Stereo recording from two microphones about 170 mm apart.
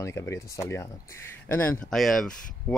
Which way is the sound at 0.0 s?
15° left (ahead or behind).